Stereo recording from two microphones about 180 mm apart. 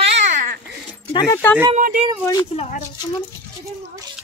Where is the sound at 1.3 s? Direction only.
10° left (ahead or behind).